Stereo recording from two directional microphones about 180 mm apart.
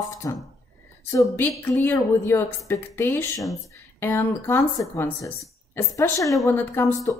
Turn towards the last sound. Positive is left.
turn(degrees=10)  # may be behind; listen again after turning